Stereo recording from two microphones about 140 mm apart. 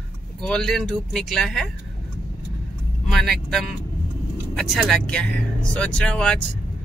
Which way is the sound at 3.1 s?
5° left (ahead or behind).